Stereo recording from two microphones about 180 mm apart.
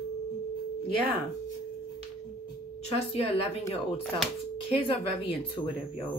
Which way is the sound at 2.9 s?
35° left (ahead or behind).